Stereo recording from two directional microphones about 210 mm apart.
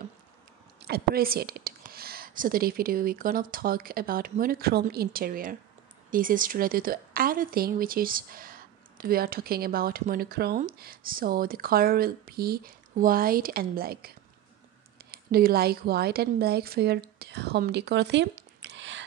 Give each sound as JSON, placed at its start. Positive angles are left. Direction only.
{"t": 0.8, "sound": "a woman's voice", "side_deg": -45}